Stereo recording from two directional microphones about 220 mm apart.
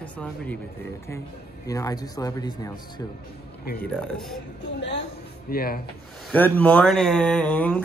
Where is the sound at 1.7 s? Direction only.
15° left (ahead or behind).